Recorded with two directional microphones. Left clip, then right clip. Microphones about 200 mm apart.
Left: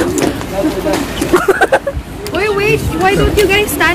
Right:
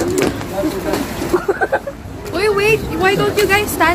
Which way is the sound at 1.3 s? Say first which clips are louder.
Left 6 dB; 60° left (ahead or behind).